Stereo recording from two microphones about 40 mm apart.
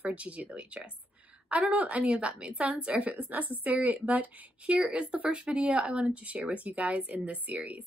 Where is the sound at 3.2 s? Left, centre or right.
Right.